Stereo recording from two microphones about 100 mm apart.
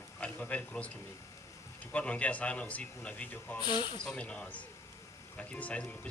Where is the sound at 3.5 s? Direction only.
50° left (ahead or behind).